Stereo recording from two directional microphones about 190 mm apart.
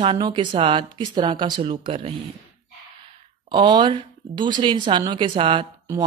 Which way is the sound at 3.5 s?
25° right (ahead or behind).